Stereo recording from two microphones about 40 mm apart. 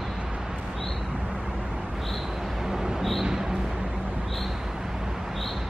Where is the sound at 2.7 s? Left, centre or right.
Centre.